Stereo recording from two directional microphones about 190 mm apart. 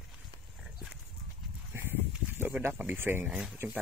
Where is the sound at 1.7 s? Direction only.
10° right (ahead or behind).